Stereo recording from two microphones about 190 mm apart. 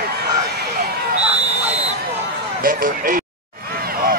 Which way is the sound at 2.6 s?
50° right (ahead or behind).